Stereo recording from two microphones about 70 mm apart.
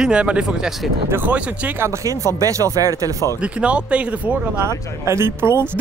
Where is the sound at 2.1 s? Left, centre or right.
Right.